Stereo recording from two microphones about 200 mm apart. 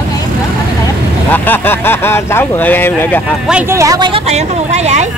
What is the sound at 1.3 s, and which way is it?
Speech, 10° left (ahead or behind).